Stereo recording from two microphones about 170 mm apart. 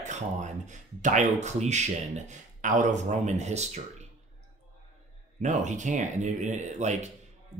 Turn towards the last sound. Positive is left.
turn(degrees=-45)  # may be behind; listen again after turning